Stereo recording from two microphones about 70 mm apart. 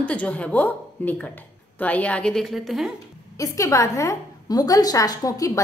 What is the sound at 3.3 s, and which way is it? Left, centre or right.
A woman's voice, left.